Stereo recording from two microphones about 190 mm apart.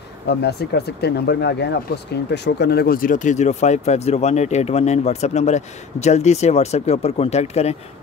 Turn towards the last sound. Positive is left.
turn(degrees=35)  # may be behind; listen again after turning